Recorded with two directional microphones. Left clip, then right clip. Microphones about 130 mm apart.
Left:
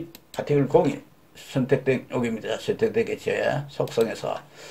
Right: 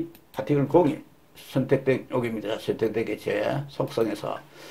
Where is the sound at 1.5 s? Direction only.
30° right (ahead or behind).